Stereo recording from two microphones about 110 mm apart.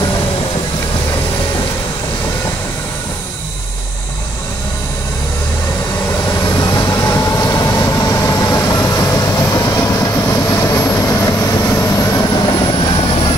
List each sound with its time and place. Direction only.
6.1 s vehicle: 35° left (ahead or behind); by 13.3 s 50° left (ahead or behind)